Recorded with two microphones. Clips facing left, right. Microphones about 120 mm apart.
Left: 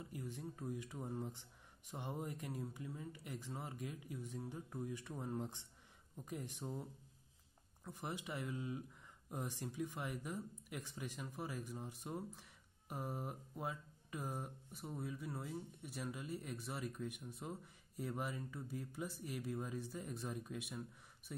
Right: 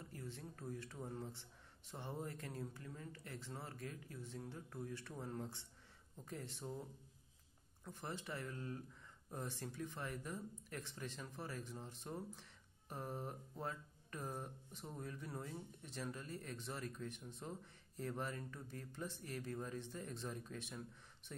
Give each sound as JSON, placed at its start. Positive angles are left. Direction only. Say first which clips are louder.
{"t": 0.0, "sound": "speech", "louder": "left 4 dB", "side_deg": 15}
{"t": 7.8, "sound": "speech", "louder": "left 2 dB", "side_deg": 15}